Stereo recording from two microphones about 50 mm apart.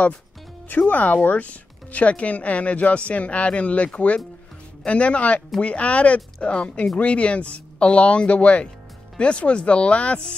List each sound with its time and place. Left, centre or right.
0.7 s speech: left